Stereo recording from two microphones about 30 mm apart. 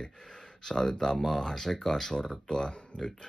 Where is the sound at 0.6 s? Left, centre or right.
Left.